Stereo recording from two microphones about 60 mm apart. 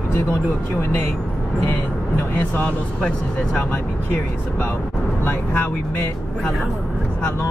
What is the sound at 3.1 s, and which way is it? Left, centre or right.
Speech, left.